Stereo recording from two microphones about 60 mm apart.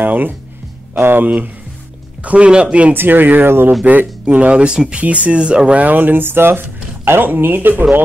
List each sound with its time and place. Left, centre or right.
0.0 s speech: right
2.2 s speech: right
2.9 s speech: right
3.8 s speech: right